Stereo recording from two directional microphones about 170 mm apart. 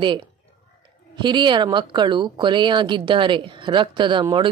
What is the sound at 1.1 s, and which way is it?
Speech, 25° right (ahead or behind).